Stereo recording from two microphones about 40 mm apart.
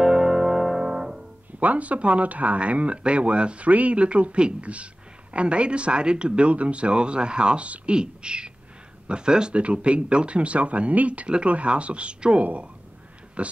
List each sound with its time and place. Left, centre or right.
0.0 s music: centre
0.8 s piano: centre
1.6 s speech: right
9.6 s speech: right
11.2 s speech: right